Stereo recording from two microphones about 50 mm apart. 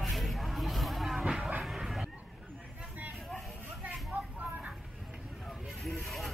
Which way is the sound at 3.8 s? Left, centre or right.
Right.